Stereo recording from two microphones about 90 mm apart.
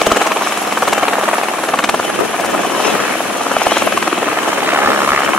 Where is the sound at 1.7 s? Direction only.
5° left (ahead or behind).